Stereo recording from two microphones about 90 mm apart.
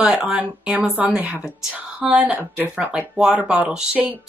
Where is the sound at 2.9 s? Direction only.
10° right (ahead or behind).